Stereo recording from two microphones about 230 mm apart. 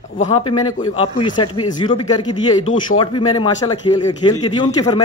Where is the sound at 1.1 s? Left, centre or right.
Left.